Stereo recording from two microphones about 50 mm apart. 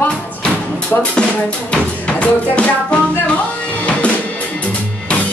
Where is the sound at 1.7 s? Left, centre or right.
Left.